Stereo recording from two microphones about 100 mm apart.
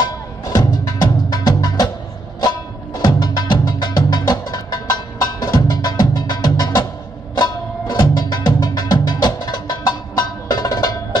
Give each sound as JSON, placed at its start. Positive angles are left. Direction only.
{"t": 0.0, "sound": "music", "side_deg": 40}
{"t": 3.0, "sound": "music", "side_deg": 45}